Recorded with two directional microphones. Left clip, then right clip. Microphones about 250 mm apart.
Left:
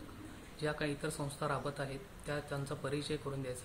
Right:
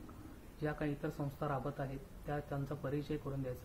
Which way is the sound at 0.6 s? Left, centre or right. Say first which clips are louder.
Left 2 dB; centre.